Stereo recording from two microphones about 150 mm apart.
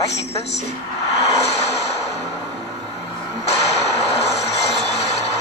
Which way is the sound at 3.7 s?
45° left (ahead or behind).